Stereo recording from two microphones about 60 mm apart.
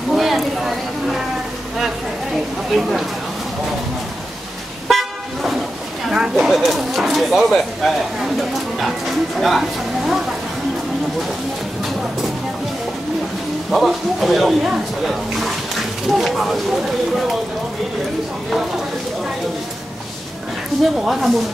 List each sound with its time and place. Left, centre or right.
0.1 s a sound: centre
2.3 s speech: centre
4.8 s car: centre
6.0 s speech: centre
13.7 s speech: centre
15.0 s a sound: centre
21.1 s speech: centre